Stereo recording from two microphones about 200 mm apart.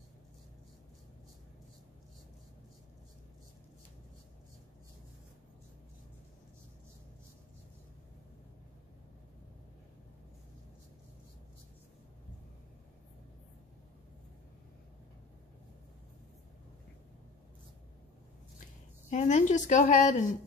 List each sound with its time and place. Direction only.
19.0 s a woman's voice: 35° left (ahead or behind)